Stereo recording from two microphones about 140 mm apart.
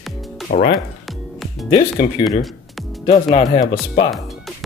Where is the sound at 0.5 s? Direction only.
75° left (ahead or behind).